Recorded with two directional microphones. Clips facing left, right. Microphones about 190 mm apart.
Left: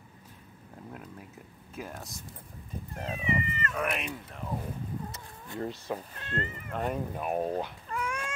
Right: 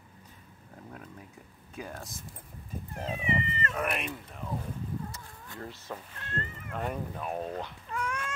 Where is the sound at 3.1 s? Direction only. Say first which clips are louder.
Even; 30° right (ahead or behind).